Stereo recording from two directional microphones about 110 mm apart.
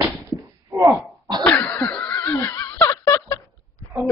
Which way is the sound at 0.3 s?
5° left (ahead or behind).